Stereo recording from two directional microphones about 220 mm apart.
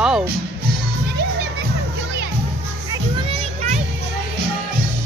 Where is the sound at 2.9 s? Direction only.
30° right (ahead or behind).